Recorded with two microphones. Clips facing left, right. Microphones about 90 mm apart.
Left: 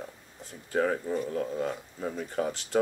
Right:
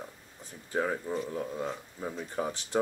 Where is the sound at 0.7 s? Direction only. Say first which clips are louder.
Left 4 dB; 15° right (ahead or behind).